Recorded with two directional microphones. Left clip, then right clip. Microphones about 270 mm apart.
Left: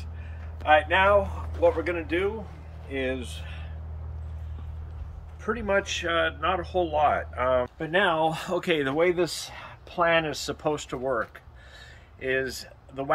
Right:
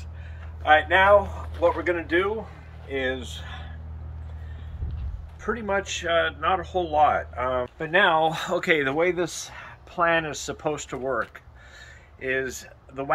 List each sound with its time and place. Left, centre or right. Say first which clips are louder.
0.7 s speech: right 3 dB; centre
5.4 s speech: even; centre